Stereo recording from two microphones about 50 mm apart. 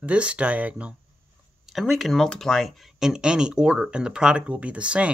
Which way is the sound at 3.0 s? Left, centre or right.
Centre.